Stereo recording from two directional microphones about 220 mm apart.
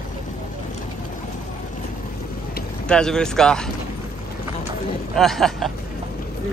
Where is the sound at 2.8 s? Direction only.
5° left (ahead or behind).